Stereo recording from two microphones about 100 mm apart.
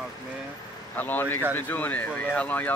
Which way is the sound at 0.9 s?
20° left (ahead or behind).